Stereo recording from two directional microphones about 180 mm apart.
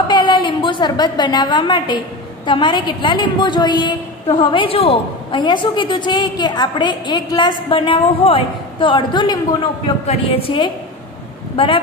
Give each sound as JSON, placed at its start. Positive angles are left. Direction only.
{"t": 0.1, "sound": "a woman's voice", "side_deg": 25}